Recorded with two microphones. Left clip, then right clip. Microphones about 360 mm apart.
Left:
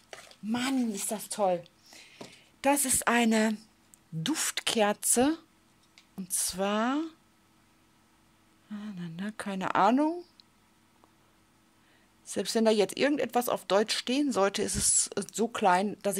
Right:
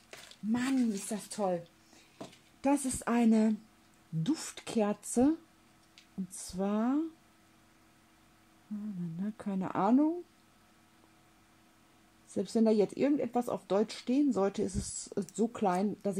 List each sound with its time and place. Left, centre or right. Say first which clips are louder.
0.5 s speech: left 2 dB; left
0.7 s speech: left 2 dB; left
2.6 s speech: left 5 dB; left
9.2 s speech: left 5 dB; left
12.4 s speech: left 3 dB; left
15.3 s speech: left 3 dB; left
15.6 s speech: left 8 dB; left